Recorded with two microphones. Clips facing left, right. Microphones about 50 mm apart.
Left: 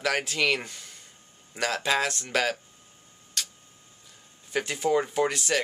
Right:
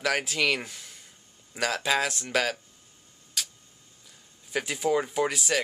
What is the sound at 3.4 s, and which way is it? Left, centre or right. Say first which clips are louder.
Tick-tock: even; centre.